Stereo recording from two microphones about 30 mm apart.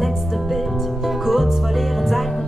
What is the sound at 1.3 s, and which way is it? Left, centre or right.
Music, centre.